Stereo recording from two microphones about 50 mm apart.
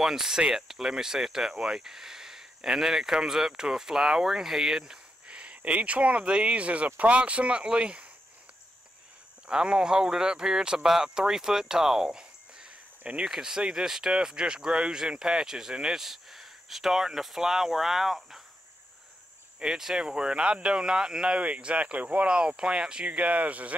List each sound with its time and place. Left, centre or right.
0.0 s speech: centre
9.5 s speech: centre
19.6 s speech: centre
21.4 s speech: right